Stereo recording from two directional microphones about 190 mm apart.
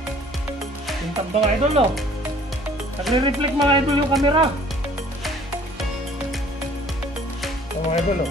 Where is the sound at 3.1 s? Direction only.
25° right (ahead or behind).